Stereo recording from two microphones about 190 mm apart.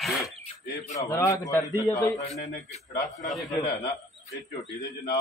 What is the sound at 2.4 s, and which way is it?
Speech, 40° left (ahead or behind).